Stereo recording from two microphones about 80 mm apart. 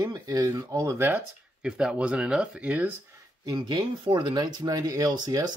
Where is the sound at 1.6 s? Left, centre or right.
Centre.